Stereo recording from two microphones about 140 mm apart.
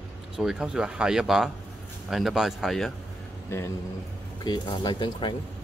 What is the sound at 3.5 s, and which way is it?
Speech, 20° left (ahead or behind).